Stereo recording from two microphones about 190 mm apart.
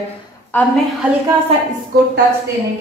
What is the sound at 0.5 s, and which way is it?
Speech, 10° left (ahead or behind).